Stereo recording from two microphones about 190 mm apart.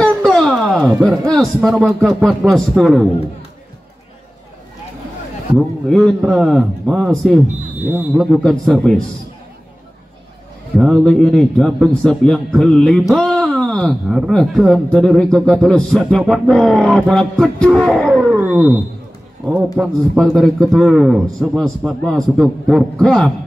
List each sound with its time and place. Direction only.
0.0 s speech: 5° left (ahead or behind)
5.5 s a man's voice: centre (ahead or behind)
10.8 s a man's voice: centre (ahead or behind)
18.3 s wild animals: 10° right (ahead or behind)
19.8 s a man's voice: centre (ahead or behind)